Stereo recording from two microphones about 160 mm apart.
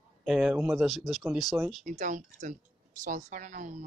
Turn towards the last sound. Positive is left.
turn(degrees=-50)  # may be behind; listen again after turning